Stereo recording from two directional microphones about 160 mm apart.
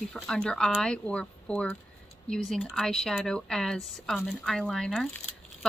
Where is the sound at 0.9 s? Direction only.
5° left (ahead or behind).